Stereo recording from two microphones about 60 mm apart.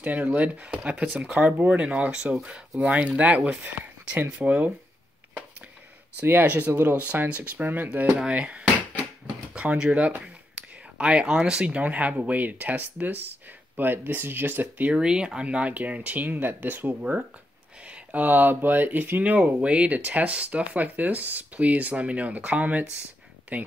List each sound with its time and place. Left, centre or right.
0.0 s speech: right
6.2 s speech: right
8.3 s a sound: right
9.5 s speech: centre; by 14.9 s right
14.9 s speech: centre; by 16.9 s right
17.8 s speech: right